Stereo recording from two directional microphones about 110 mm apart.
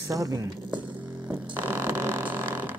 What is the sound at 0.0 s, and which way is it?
Speech, 30° right (ahead or behind).